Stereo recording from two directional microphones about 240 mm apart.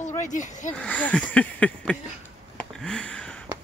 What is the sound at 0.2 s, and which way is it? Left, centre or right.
Speech, left.